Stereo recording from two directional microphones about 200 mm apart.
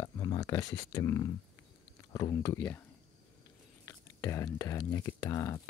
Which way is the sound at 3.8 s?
15° left (ahead or behind).